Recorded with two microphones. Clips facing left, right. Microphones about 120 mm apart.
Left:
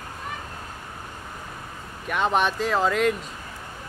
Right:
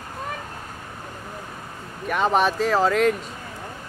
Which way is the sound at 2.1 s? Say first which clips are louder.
Right 2 dB; centre (ahead or behind).